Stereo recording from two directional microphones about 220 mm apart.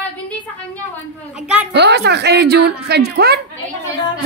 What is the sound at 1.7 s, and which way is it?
A woman's voice, 50° right (ahead or behind).